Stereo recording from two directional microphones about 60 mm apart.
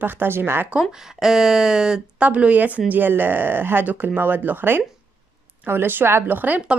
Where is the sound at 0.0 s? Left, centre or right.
Right.